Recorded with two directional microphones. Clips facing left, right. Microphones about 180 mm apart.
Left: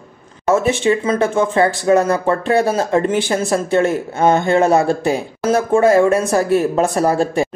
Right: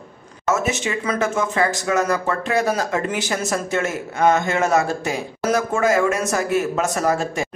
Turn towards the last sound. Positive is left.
turn(degrees=30)  # may be behind; listen again after turning